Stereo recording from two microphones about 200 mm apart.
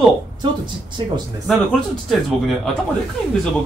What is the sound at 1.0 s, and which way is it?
Speech, 25° right (ahead or behind).